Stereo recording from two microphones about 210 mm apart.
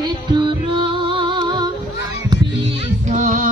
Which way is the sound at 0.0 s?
20° right (ahead or behind).